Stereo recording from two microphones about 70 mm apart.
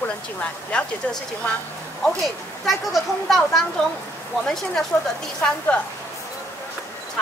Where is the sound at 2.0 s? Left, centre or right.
Centre.